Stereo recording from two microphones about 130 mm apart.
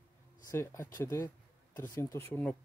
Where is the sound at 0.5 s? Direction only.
20° left (ahead or behind).